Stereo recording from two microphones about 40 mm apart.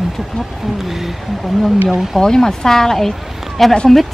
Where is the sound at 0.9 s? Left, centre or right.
Centre.